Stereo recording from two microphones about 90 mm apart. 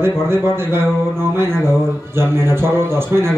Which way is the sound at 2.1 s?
25° right (ahead or behind).